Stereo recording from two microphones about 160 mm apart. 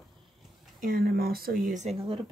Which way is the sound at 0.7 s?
65° right (ahead or behind).